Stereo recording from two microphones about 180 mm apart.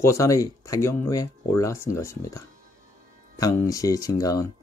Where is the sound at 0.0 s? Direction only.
15° left (ahead or behind).